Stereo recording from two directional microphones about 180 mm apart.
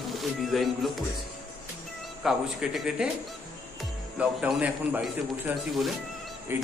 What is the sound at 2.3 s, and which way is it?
Speech, 5° right (ahead or behind).